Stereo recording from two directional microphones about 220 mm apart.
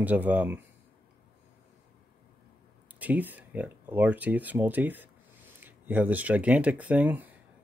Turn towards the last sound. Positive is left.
turn(degrees=-5)  # may be behind; listen again after turning